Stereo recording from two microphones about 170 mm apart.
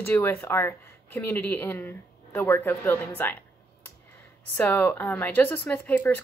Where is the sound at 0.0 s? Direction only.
15° left (ahead or behind).